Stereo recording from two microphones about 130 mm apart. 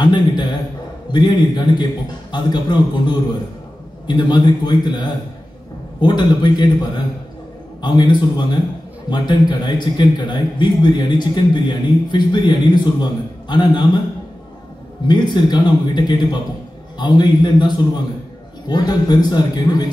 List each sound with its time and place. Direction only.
0.0 s a man's voice: 35° left (ahead or behind)
15.0 s a man's voice: 35° left (ahead or behind)